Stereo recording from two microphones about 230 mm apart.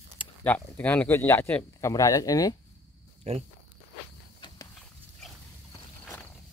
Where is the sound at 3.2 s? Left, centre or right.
Right.